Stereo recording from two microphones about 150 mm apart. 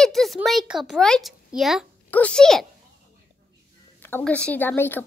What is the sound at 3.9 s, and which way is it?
Speech, 15° left (ahead or behind).